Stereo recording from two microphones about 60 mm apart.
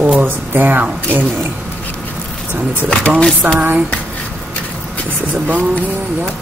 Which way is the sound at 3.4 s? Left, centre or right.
Right.